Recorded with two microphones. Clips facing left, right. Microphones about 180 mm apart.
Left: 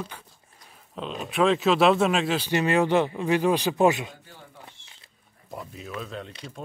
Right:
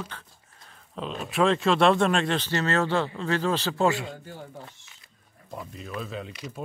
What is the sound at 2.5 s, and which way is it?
A man's voice, 15° left (ahead or behind).